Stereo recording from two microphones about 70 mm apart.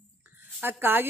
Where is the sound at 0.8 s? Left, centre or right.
Right.